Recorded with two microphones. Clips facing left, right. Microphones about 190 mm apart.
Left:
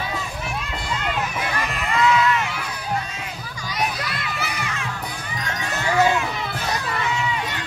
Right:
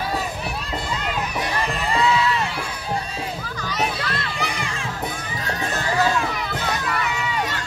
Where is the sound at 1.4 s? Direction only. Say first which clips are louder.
Right 2 dB; 30° right (ahead or behind).